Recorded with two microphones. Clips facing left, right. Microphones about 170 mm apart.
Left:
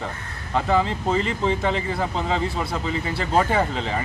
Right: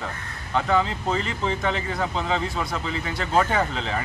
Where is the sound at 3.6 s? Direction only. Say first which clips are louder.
Left 2 dB; 5° left (ahead or behind).